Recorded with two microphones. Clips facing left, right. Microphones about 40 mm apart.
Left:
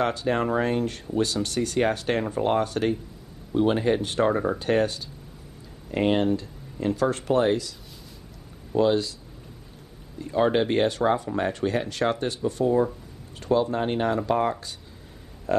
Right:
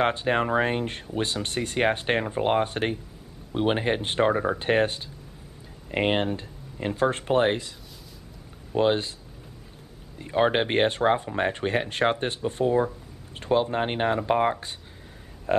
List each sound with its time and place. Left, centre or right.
0.0 s speech: right
8.7 s speech: right
10.1 s speech: right